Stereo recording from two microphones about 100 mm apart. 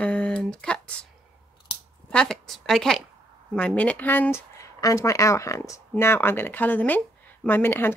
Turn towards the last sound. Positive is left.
turn(degrees=20)  # may be behind; listen again after turning